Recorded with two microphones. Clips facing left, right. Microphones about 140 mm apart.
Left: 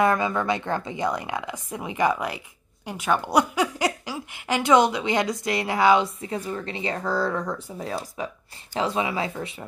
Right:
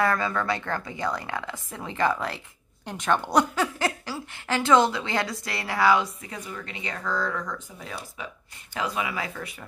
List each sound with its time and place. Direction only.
0.0 s a woman's voice: 20° left (ahead or behind)